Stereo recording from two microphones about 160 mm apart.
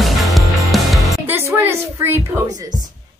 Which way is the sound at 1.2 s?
15° right (ahead or behind).